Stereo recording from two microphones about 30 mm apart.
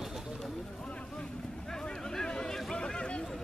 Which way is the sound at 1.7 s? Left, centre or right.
Left.